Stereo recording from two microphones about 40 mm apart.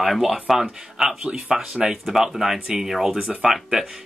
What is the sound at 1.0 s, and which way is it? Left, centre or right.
Speech, centre.